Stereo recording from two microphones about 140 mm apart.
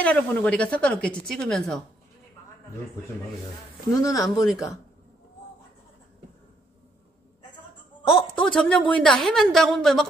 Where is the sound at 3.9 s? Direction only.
25° left (ahead or behind).